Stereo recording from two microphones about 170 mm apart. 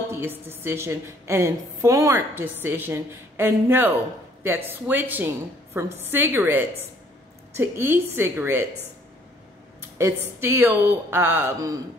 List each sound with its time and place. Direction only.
0.1 s a woman's voice: 15° right (ahead or behind)
10.4 s a woman's voice: 15° right (ahead or behind)